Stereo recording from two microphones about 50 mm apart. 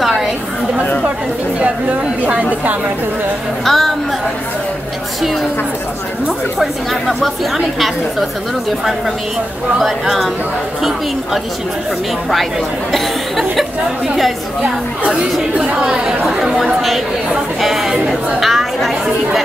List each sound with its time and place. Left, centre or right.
0.0 s chatter: centre
1.6 s speech: right
3.6 s speech: centre
6.6 s speech: centre
9.8 s speech: centre
12.9 s speech: centre
14.6 s speech: right; by 19.4 s centre